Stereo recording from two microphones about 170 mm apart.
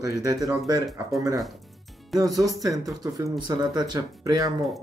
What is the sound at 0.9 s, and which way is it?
Speech, 20° right (ahead or behind).